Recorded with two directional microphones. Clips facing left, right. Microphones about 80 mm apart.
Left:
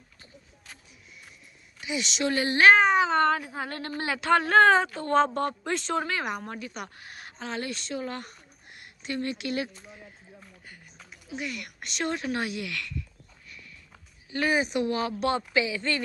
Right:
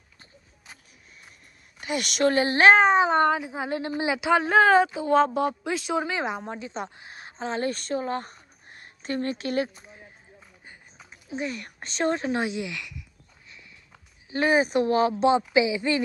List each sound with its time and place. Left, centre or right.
1.8 s speech: right
2.3 s a woman's voice: right
7.7 s speech: right
8.0 s speech: right
11.1 s speech: right
14.3 s a woman's voice: right